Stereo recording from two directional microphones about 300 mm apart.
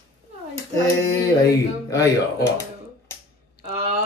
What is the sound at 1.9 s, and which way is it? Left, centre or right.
Speech, centre.